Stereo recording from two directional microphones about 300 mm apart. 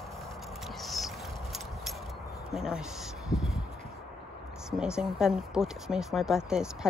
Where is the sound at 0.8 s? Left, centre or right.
Centre.